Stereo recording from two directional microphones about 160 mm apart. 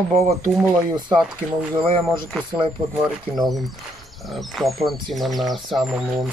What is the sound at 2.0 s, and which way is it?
Speech, 5° right (ahead or behind).